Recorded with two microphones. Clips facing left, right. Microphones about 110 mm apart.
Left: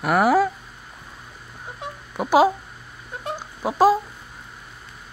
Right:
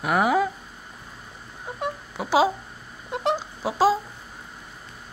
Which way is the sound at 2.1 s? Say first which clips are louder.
Left 4 dB; 15° left (ahead or behind).